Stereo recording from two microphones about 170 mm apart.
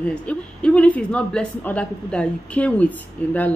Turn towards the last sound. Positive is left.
turn(degrees=10)  # may be behind; listen again after turning